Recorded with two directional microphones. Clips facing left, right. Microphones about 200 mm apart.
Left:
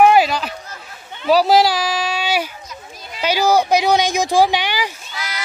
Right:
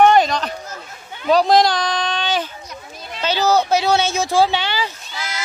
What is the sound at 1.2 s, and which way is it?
Speech, 5° left (ahead or behind).